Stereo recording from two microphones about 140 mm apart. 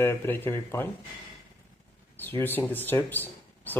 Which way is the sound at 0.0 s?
15° left (ahead or behind).